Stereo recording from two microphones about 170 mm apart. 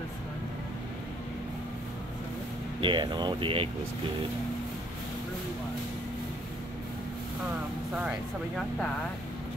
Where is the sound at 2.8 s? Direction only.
30° right (ahead or behind).